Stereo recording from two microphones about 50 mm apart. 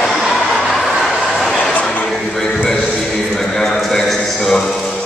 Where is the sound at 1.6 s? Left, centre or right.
Left.